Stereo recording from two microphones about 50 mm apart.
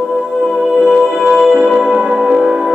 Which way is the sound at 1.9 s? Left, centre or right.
Right.